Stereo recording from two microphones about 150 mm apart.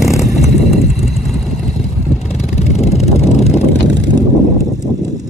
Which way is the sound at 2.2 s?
45° left (ahead or behind).